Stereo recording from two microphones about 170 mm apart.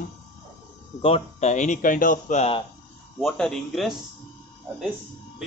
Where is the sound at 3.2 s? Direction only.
5° left (ahead or behind).